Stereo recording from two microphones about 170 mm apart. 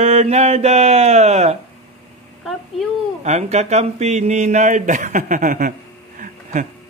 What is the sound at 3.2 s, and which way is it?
Speech, 40° right (ahead or behind).